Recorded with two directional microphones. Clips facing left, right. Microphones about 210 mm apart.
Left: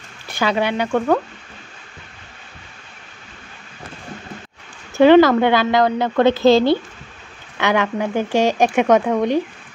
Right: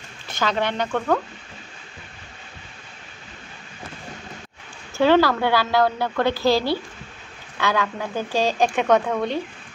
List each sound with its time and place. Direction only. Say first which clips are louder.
0.3 s speech: left 4 dB; 10° left (ahead or behind)
4.9 s a woman's voice: left 7 dB; 20° left (ahead or behind)